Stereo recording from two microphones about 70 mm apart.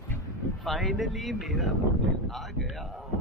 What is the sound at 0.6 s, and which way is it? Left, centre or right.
Speech, centre.